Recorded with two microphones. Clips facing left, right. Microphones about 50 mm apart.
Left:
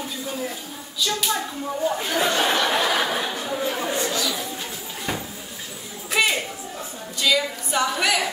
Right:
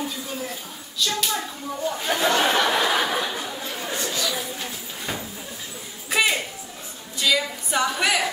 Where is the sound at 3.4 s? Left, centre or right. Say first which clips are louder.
Left 6 dB; centre.